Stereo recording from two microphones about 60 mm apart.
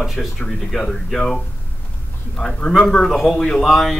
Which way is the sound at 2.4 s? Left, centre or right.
Centre.